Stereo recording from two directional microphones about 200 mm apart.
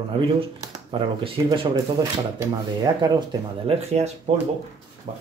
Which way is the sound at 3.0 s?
20° right (ahead or behind).